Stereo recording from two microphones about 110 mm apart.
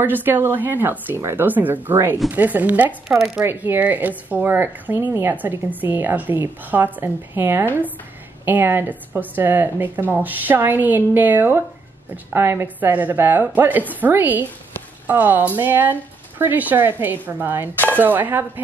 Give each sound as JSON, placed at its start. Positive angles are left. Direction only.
{"t": 0.0, "sound": "a woman's voice", "side_deg": -15}
{"t": 3.1, "sound": "speech", "side_deg": 0}
{"t": 3.4, "sound": "a woman's voice", "side_deg": -20}